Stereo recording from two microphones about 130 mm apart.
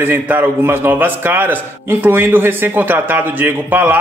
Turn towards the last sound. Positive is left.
turn(degrees=-15)  # may be behind; listen again after turning